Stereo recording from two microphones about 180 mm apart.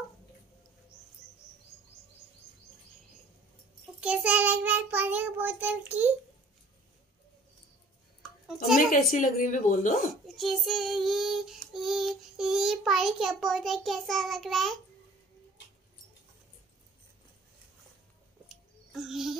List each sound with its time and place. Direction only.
4.0 s child singing: 5° right (ahead or behind)
9.1 s speech: 45° left (ahead or behind)
10.2 s child singing: centre (ahead or behind)
18.5 s a sound: centre (ahead or behind)